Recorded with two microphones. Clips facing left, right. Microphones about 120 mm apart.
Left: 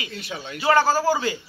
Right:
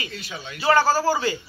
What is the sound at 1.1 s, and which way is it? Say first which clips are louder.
Speech: even; 10° left (ahead or behind).